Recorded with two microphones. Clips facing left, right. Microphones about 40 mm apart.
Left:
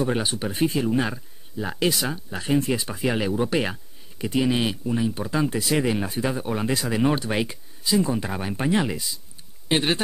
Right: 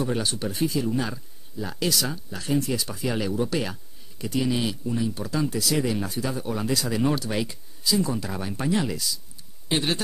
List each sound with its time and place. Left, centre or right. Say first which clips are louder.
0.0 s speech: left 2 dB; left
0.6 s speech: left 3 dB; left